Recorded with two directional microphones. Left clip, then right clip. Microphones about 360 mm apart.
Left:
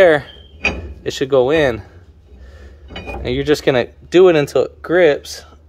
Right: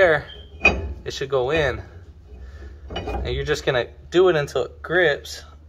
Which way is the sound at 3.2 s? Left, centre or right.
Left.